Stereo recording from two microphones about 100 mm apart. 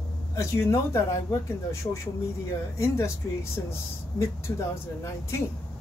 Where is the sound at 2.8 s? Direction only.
30° left (ahead or behind).